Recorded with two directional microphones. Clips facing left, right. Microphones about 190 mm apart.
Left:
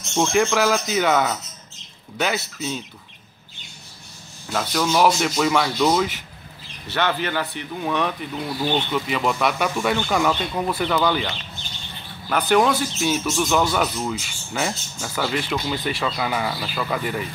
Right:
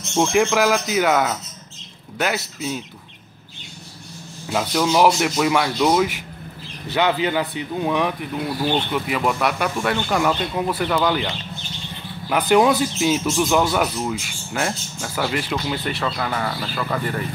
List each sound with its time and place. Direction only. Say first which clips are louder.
0.1 s a man's voice: right 2 dB; 5° right (ahead or behind)
4.5 s a man's voice: right 2 dB; 10° right (ahead or behind)
12.3 s a man's voice: right 2 dB; 10° right (ahead or behind)
16.0 s speech: even; 10° left (ahead or behind)